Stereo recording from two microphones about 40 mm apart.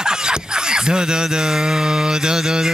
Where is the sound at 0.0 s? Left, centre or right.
Centre.